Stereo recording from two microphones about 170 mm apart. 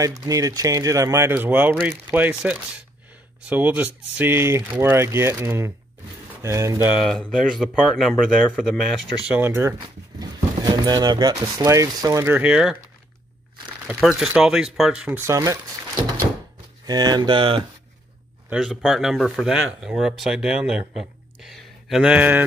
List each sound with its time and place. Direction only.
0.0 s speech: 20° right (ahead or behind)
7.0 s speech: 5° left (ahead or behind)
9.3 s speech: 15° right (ahead or behind)
13.8 s speech: centre (ahead or behind)
15.2 s speech: 20° right (ahead or behind)
18.5 s speech: 5° right (ahead or behind)